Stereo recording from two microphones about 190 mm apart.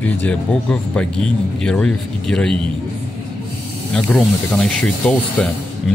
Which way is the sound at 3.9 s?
5° left (ahead or behind).